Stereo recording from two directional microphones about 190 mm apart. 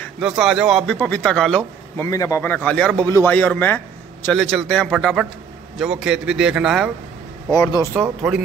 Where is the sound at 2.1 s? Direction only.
15° left (ahead or behind); by 6.9 s centre (ahead or behind).